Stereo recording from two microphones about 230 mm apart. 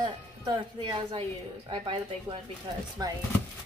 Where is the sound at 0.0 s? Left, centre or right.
Centre.